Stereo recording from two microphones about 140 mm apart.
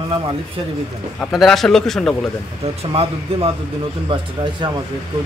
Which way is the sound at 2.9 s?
45° right (ahead or behind).